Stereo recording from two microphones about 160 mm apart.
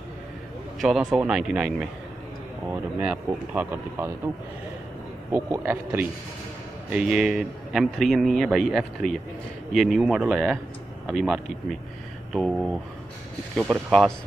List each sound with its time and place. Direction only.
0.7 s a man's voice: centre (ahead or behind)
2.7 s speech: 10° right (ahead or behind)
5.3 s a man's voice: 15° right (ahead or behind)